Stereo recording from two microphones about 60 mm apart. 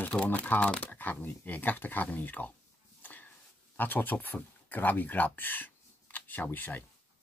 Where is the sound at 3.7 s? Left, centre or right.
Left.